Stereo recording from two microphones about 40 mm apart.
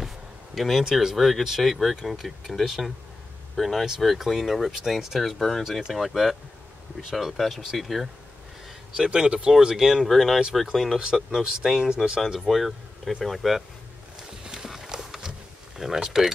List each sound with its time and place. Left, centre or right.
0.6 s speech: centre
1.1 s speech: centre
5.6 s speech: centre
7.0 s speech: centre
7.3 s speech: centre
8.9 s speech: centre
10.0 s speech: centre
11.3 s speech: centre
12.4 s speech: centre
14.4 s clip-clop: centre
14.7 s horse: centre
15.8 s speech: centre